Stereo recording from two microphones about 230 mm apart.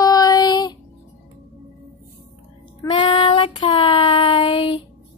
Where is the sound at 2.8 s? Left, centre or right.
Left.